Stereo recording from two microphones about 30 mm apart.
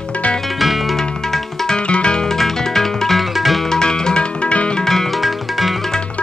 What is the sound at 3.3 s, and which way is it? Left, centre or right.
Music, centre.